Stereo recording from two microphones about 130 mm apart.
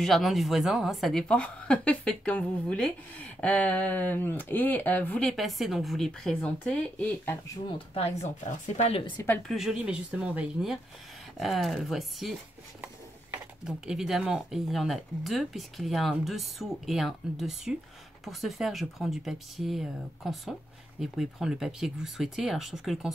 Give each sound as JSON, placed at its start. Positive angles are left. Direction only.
{"t": 0.0, "sound": "a woman's voice", "side_deg": 0}
{"t": 8.5, "sound": "speech", "side_deg": 55}
{"t": 9.5, "sound": "speech", "side_deg": -5}
{"t": 13.7, "sound": "speech", "side_deg": -5}